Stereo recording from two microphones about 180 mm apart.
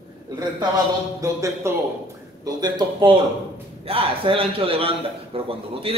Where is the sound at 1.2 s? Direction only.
15° right (ahead or behind).